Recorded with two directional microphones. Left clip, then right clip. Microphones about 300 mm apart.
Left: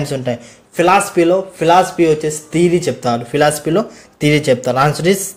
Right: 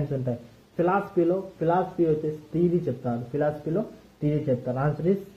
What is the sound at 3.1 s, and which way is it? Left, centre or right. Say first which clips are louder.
Speech: left 15 dB; left.